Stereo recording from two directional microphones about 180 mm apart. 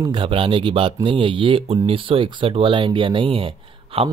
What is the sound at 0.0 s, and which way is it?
Speech, 25° right (ahead or behind).